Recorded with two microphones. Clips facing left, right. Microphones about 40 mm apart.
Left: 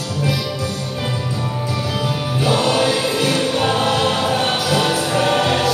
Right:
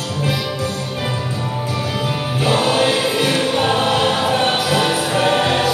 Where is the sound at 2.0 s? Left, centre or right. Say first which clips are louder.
Even; centre.